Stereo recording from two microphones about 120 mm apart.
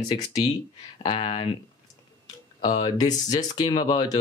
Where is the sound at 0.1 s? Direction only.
35° left (ahead or behind).